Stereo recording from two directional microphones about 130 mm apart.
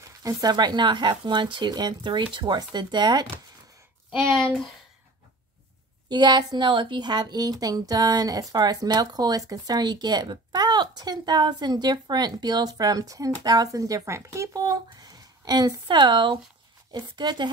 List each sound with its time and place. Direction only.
0.2 s a woman's voice: 30° right (ahead or behind)
6.0 s a woman's voice: 35° right (ahead or behind)